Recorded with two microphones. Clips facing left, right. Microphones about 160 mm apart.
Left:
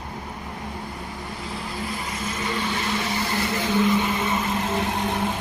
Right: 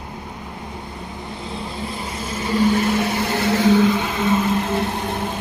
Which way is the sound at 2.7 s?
60° right (ahead or behind).